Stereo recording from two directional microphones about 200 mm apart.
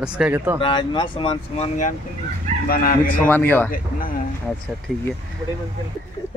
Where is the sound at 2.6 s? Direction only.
45° left (ahead or behind).